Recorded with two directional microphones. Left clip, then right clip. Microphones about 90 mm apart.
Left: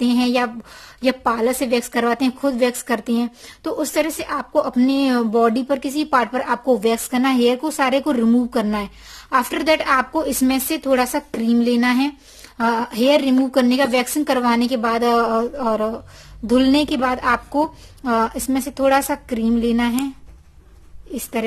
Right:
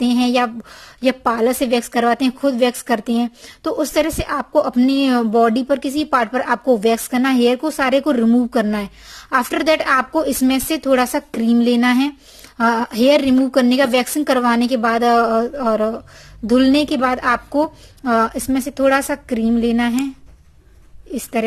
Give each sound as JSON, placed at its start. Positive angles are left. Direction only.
{"t": 0.0, "sound": "a sound", "side_deg": -30}
{"t": 1.0, "sound": "a woman's voice", "side_deg": -35}
{"t": 5.1, "sound": "a woman's voice", "side_deg": -30}
{"t": 6.0, "sound": "a woman's voice", "side_deg": -40}
{"t": 21.1, "sound": "a woman's voice", "side_deg": -35}